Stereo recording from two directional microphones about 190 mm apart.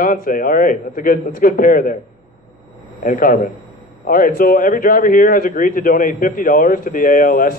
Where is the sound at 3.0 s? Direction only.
45° left (ahead or behind).